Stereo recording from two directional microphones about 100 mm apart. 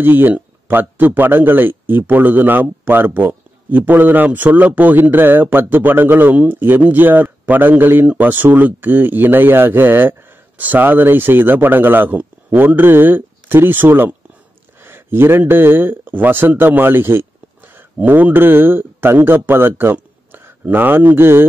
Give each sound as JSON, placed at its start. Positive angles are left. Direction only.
{"t": 0.0, "sound": "a man's voice", "side_deg": -20}